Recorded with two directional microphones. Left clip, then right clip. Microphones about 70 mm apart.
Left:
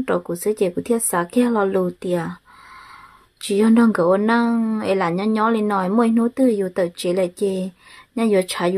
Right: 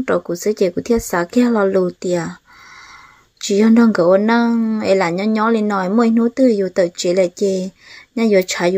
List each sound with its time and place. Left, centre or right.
0.0 s a woman's voice: right
3.3 s a woman's voice: right